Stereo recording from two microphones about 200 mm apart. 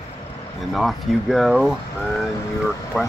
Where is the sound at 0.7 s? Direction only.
Centre (ahead or behind).